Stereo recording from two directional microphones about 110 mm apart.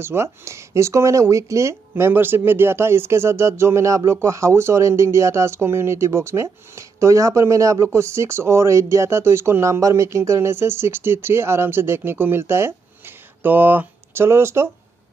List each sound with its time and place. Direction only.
0.0 s speech: 25° right (ahead or behind)